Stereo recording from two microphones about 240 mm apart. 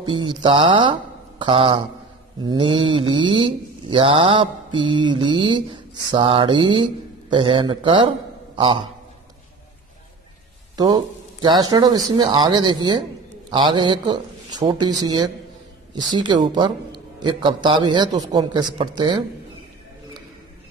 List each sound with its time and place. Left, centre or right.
0.0 s speech: centre
11.4 s speech: centre